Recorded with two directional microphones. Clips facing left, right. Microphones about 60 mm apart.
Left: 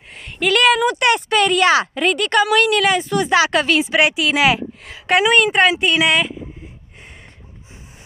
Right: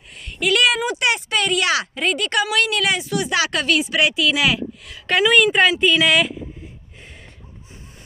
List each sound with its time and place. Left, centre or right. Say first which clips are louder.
0.1 s a sound: left 2 dB; left
0.7 s speech: left 5 dB; left
2.0 s speech: left 4 dB; left
5.0 s a woman's voice: left 2 dB; centre
5.3 s speech: right 1 dB; centre